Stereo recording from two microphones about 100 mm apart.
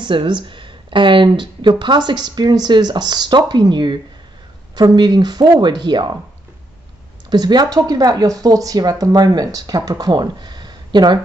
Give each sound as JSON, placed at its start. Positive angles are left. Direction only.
{"t": 0.0, "sound": "speech", "side_deg": -55}
{"t": 7.2, "sound": "speech", "side_deg": -45}